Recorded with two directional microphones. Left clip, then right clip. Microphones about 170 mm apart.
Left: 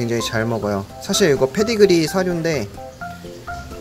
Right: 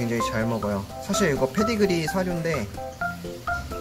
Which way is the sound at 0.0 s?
35° left (ahead or behind).